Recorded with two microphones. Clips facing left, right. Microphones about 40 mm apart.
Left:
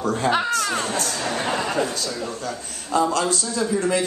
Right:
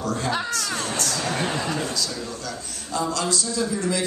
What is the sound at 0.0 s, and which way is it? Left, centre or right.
A man's voice, left.